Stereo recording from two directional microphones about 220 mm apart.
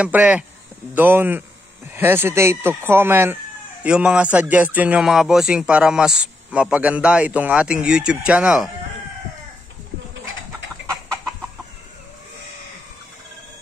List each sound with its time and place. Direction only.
0.0 s speech: 5° right (ahead or behind)